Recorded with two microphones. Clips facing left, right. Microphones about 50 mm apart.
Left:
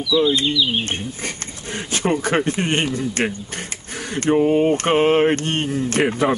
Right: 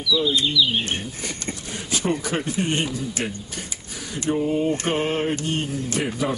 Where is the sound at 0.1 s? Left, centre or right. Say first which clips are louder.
Left 4 dB; left.